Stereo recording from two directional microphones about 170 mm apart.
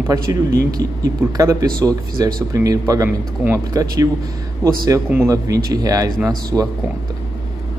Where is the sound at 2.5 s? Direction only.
20° right (ahead or behind).